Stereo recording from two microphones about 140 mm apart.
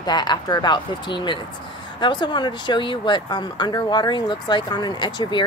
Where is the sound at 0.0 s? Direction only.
30° left (ahead or behind).